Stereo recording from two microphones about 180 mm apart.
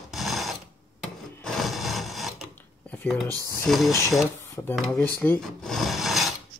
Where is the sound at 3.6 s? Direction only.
Centre (ahead or behind).